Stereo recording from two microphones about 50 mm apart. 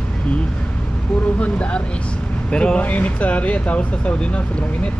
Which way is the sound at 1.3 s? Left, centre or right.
Left.